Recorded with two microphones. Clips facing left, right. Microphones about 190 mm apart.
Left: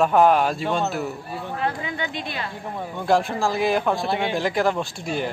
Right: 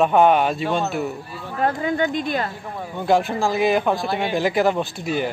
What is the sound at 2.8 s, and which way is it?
A man's voice, centre (ahead or behind).